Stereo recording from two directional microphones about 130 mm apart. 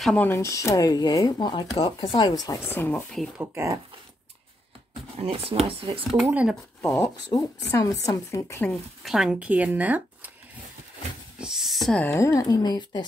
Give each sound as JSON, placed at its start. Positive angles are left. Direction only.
{"t": 0.0, "sound": "speech", "side_deg": 10}
{"t": 2.7, "sound": "speech", "side_deg": 15}
{"t": 3.3, "sound": "speech", "side_deg": -20}
{"t": 5.1, "sound": "speech", "side_deg": -50}
{"t": 6.2, "sound": "speech", "side_deg": -10}
{"t": 6.8, "sound": "a sound", "side_deg": 20}
{"t": 7.8, "sound": "speech", "side_deg": 25}
{"t": 8.6, "sound": "speech", "side_deg": 0}
{"t": 11.3, "sound": "speech", "side_deg": -5}
{"t": 12.0, "sound": "speech", "side_deg": 20}